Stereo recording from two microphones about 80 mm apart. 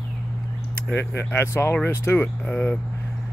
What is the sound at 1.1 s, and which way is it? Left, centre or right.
Speech, left.